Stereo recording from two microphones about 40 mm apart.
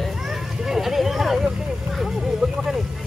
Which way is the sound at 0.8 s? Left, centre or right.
Centre.